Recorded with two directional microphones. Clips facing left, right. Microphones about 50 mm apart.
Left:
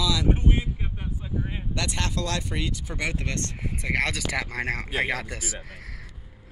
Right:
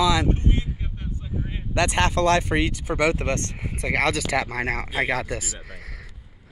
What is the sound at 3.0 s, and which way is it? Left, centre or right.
Speech, right.